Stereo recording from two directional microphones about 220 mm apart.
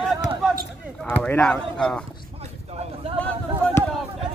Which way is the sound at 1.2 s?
5° left (ahead or behind).